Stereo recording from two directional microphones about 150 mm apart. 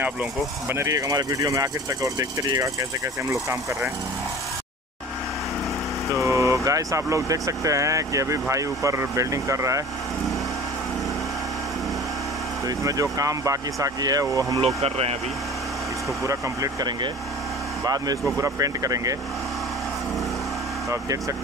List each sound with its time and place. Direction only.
0.0 s speech: 15° right (ahead or behind)
6.0 s speech: 20° right (ahead or behind)
12.6 s speech: 25° right (ahead or behind)
14.8 s speech: 40° right (ahead or behind)
16.3 s speech: 20° right (ahead or behind)
20.9 s speech: 20° right (ahead or behind)